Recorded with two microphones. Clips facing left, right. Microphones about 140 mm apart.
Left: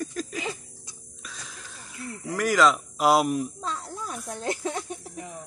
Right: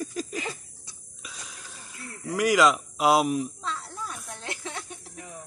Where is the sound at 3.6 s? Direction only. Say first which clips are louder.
Left 1 dB; 40° left (ahead or behind).